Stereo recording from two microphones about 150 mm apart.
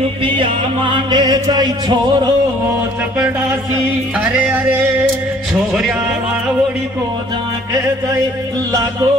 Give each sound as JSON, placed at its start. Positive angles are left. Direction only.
{"t": 0.2, "sound": "music", "side_deg": -35}
{"t": 4.2, "sound": "music", "side_deg": -15}
{"t": 5.5, "sound": "speech", "side_deg": -5}